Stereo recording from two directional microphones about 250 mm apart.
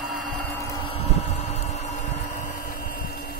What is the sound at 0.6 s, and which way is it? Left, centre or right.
Vehicle, centre.